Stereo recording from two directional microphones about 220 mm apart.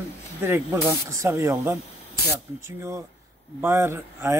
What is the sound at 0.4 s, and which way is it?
Speech, 10° right (ahead or behind).